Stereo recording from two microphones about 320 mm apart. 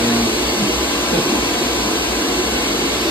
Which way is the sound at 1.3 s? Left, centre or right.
Centre.